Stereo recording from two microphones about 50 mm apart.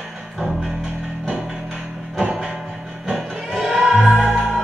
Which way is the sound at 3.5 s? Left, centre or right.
Centre.